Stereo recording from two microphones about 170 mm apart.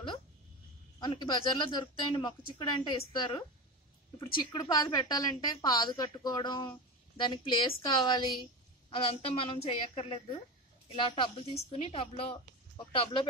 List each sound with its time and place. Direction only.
0.9 s a woman's voice: 25° left (ahead or behind)